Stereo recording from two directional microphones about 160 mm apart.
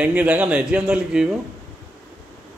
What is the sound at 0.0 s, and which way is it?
A man's voice, 10° right (ahead or behind).